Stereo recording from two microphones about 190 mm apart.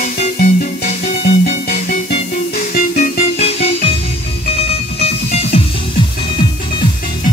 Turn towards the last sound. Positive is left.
turn(degrees=35)  # may be behind; listen again after turning